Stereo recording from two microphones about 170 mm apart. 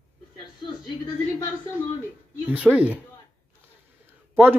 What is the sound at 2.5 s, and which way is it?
Speech, 10° right (ahead or behind).